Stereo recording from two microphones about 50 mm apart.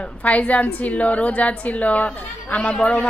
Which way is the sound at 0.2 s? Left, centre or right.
Left.